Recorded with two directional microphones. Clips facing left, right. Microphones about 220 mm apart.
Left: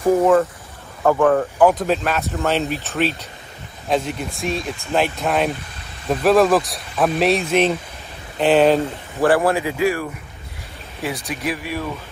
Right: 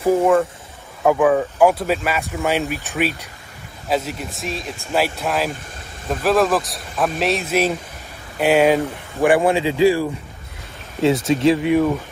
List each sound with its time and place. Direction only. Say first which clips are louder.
0.0 s speech: left 1 dB; centre (ahead or behind)
9.6 s speech: right 4 dB; 25° right (ahead or behind)